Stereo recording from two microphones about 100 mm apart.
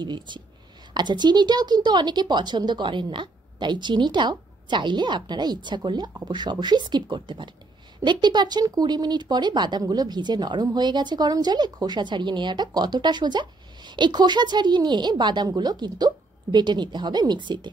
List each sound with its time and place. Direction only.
0.0 s speech: 50° right (ahead or behind)